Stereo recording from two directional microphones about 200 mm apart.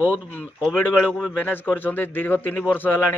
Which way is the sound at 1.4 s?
10° left (ahead or behind).